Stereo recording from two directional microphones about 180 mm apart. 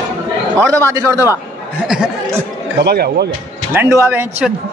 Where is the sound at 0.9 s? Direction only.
15° right (ahead or behind).